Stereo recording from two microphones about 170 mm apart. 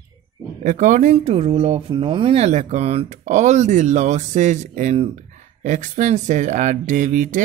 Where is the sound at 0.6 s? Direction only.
50° right (ahead or behind).